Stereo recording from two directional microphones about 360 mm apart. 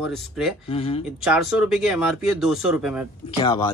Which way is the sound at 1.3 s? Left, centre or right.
Centre.